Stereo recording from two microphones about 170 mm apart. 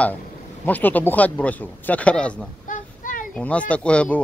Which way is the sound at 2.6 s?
50° left (ahead or behind).